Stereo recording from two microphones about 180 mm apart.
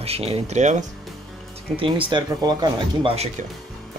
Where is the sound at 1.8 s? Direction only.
30° right (ahead or behind).